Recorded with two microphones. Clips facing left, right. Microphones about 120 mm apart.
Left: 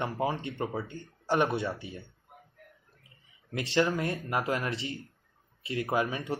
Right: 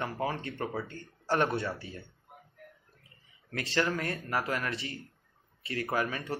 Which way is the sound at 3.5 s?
25° left (ahead or behind).